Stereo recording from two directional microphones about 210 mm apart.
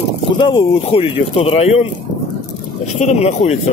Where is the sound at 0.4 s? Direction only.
25° left (ahead or behind).